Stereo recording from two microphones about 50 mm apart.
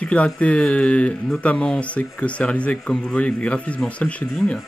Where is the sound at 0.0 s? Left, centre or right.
Left.